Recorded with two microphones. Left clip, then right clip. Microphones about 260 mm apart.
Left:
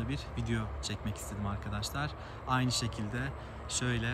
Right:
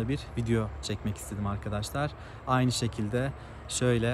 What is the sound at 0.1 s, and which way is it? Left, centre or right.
Speech, centre.